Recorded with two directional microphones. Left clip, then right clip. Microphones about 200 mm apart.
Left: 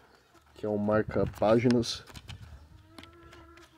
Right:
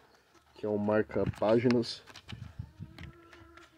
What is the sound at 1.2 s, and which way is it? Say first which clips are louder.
Speech: left 4 dB; 25° right (ahead or behind).